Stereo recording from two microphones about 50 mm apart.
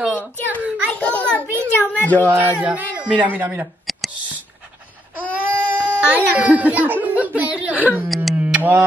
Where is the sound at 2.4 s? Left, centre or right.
Right.